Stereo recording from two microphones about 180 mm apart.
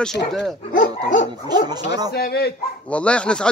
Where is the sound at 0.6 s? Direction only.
45° left (ahead or behind).